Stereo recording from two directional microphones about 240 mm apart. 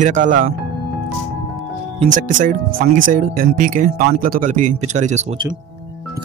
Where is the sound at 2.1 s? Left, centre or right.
Right.